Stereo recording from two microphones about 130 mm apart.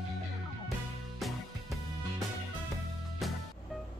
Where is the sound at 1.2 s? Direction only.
Centre (ahead or behind).